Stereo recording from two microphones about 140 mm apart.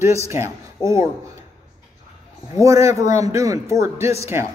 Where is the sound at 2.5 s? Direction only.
25° right (ahead or behind).